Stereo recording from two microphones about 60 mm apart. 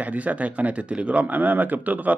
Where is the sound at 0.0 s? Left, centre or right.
Right.